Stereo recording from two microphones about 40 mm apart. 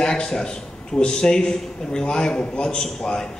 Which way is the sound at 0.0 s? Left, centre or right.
Centre.